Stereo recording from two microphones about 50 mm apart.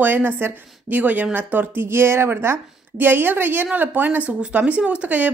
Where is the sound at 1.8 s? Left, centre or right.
Right.